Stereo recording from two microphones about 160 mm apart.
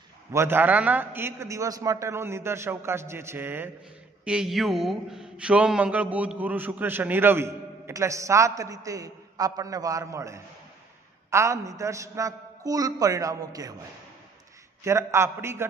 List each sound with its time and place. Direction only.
0.3 s a man's voice: 15° right (ahead or behind)
14.8 s a man's voice: 15° right (ahead or behind)